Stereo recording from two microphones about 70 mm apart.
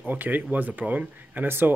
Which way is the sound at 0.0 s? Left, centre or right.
Right.